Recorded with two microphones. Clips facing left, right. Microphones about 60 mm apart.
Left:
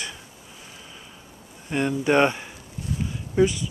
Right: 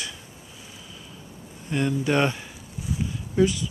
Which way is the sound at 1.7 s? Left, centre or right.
Left.